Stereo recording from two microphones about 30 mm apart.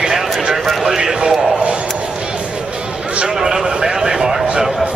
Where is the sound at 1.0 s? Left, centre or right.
Right.